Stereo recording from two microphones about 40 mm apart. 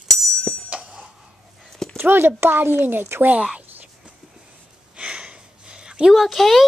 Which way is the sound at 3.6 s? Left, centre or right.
Right.